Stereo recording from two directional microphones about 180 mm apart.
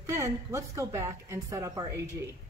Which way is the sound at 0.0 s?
15° right (ahead or behind).